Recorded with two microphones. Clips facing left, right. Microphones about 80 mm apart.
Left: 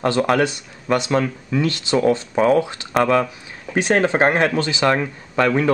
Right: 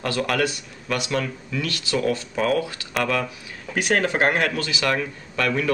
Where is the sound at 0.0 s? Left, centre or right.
Left.